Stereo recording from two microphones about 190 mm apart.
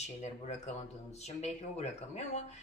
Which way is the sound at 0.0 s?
35° left (ahead or behind).